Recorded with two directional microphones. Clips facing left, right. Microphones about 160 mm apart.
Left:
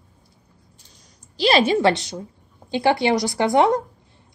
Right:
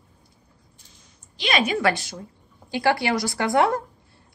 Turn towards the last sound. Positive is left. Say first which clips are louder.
# left 3 dB
turn(degrees=20)  # may be behind; listen again after turning